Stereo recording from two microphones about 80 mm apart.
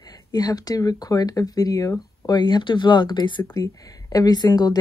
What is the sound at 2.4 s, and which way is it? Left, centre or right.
Speech, left.